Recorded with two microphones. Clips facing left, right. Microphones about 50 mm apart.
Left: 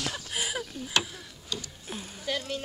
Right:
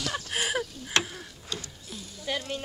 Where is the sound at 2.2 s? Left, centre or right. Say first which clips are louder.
Even; centre.